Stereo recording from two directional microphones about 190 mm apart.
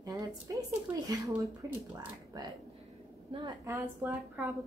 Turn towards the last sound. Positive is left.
turn(degrees=-10)  # may be behind; listen again after turning